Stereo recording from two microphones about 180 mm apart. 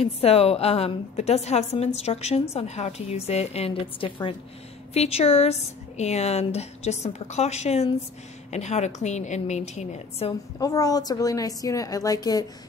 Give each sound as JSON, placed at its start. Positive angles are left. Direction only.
{"t": 0.0, "sound": "a woman's voice", "side_deg": 35}
{"t": 10.6, "sound": "a woman's voice", "side_deg": 20}